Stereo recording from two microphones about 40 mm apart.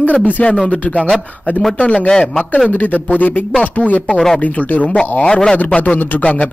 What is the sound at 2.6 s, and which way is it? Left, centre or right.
A man's voice, left.